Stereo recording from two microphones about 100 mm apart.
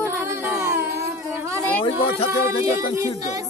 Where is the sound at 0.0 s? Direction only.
25° right (ahead or behind).